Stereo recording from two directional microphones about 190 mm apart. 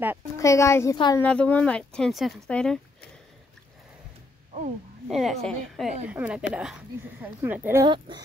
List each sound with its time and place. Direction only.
0.4 s a child's voice: 15° left (ahead or behind)
1.2 s speech: 5° left (ahead or behind)
5.1 s speech: centre (ahead or behind)
7.8 s speech: 25° right (ahead or behind)